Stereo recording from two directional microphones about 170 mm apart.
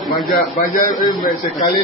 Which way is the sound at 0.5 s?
50° left (ahead or behind).